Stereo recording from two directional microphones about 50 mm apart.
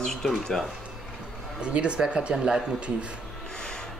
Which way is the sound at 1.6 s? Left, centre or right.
Right.